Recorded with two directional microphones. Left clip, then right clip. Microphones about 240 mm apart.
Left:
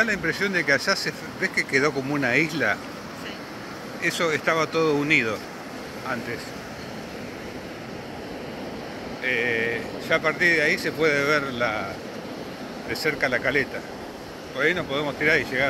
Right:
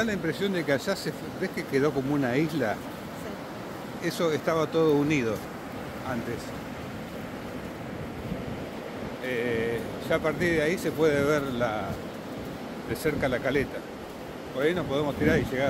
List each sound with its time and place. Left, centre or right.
0.0 s speech: centre
4.0 s speech: centre
9.2 s speech: centre
12.9 s speech: centre